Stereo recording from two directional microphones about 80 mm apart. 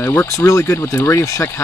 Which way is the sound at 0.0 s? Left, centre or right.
Left.